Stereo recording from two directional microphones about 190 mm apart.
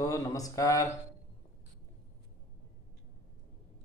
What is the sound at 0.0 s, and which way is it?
Speech, 15° left (ahead or behind).